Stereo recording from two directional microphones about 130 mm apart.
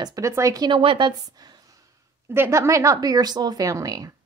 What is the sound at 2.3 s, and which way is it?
Speech, 20° right (ahead or behind).